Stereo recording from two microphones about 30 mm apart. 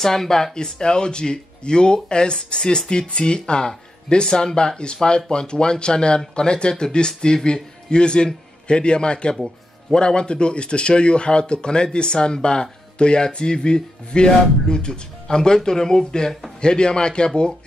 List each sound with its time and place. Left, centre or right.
0.0 s speech: centre
0.7 s a man's voice: left